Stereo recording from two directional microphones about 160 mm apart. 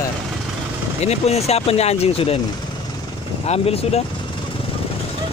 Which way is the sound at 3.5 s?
40° left (ahead or behind).